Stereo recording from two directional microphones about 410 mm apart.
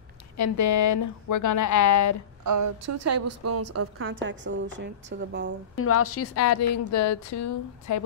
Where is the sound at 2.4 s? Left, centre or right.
Right.